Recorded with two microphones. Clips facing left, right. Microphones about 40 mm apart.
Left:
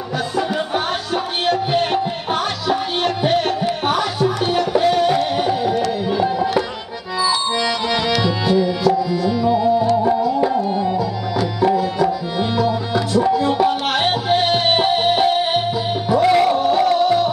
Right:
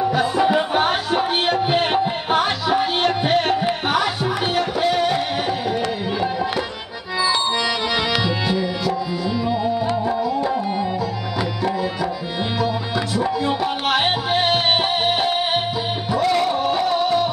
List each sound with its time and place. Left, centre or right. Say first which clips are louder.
0.2 s music: even; centre
6.1 s tabla: left 5 dB; centre
8.2 s tabla: left 4 dB; centre
10.0 s music: left 4 dB; centre
12.5 s music: left 3 dB; centre
16.2 s music: left 5 dB; centre
16.4 s music: left 4 dB; centre